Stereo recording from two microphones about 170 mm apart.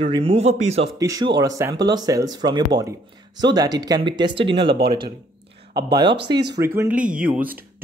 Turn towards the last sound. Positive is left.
turn(degrees=-10)  # may be behind; listen again after turning